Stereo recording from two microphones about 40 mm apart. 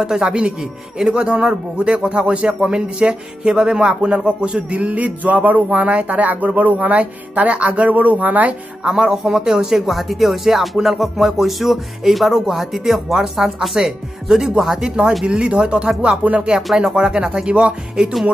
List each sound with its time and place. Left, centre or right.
0.0 s speech: centre; by 8.5 s right
8.8 s speech: centre
9.4 s music: centre
14.6 s speech: centre
14.9 s speech: centre